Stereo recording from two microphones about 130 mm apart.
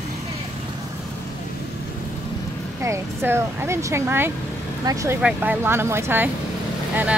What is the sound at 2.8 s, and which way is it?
Speech, 20° right (ahead or behind).